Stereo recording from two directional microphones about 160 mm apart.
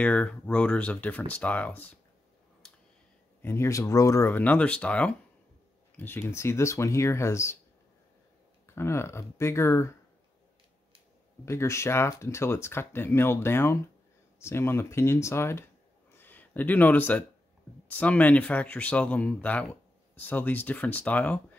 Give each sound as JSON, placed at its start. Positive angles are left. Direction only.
{"t": 0.0, "sound": "speech", "side_deg": 5}
{"t": 3.4, "sound": "speech", "side_deg": 15}
{"t": 8.7, "sound": "speech", "side_deg": 15}
{"t": 11.4, "sound": "speech", "side_deg": 15}